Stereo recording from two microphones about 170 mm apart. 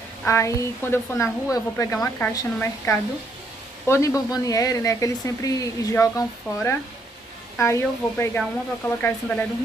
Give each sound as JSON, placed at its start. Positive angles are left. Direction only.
{"t": 0.2, "sound": "speech", "side_deg": 15}